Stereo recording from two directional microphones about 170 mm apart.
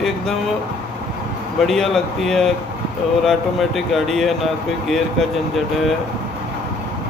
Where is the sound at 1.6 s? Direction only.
Centre (ahead or behind).